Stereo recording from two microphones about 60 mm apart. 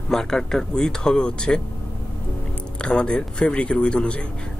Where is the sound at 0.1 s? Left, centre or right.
Centre.